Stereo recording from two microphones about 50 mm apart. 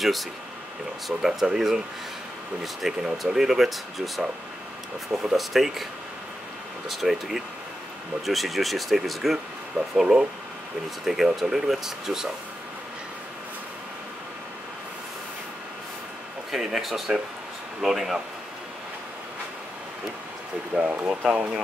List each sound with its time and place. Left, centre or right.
0.0 s speech: centre
2.8 s speech: centre
5.4 s speech: centre
6.9 s speech: centre
9.9 s speech: centre
16.5 s speech: centre
20.7 s speech: right